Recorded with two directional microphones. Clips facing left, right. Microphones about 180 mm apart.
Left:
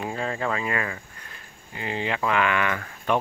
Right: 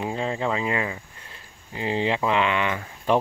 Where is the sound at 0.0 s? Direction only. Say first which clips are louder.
Right 2 dB; 20° right (ahead or behind).